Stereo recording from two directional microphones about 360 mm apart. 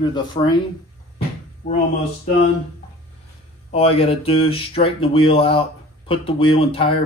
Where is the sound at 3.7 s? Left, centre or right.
Centre.